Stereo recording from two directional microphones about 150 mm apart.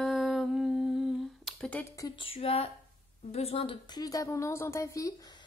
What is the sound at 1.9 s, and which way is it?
Speech, 25° left (ahead or behind).